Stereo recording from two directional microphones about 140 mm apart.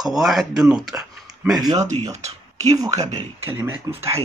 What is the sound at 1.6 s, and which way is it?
Speech, 25° right (ahead or behind).